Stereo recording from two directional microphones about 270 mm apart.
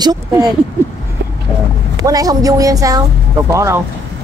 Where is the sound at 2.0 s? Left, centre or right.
Centre.